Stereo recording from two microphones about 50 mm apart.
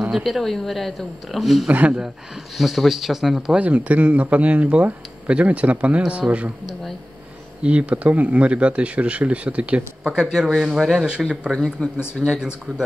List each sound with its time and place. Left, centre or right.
0.1 s speech: centre
1.7 s speech: right
2.5 s speech: centre
3.5 s speech: right
7.6 s speech: right
10.0 s speech: centre
11.1 s speech: right
12.7 s speech: centre